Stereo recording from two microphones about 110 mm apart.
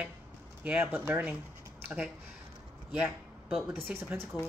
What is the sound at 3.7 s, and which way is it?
Speech, 15° right (ahead or behind).